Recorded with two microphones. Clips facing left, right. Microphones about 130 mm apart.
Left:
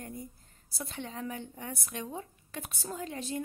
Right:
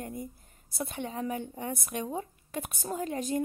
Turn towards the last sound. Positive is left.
turn(degrees=-50)  # may be behind; listen again after turning